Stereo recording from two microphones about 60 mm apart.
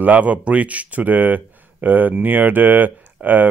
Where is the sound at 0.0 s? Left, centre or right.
Right.